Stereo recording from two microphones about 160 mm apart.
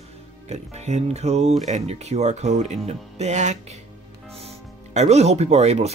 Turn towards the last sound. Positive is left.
turn(degrees=-45)  # may be behind; listen again after turning